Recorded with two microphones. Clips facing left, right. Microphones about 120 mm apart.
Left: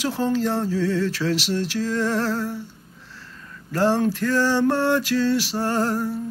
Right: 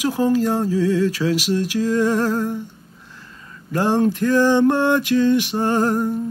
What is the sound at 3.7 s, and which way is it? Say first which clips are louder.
Speech: right 2 dB; 15° right (ahead or behind).